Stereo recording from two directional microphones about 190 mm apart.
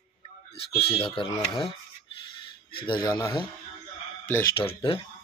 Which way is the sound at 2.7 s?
25° left (ahead or behind).